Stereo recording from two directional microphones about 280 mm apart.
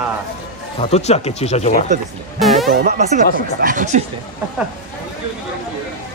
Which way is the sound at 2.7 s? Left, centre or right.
Right.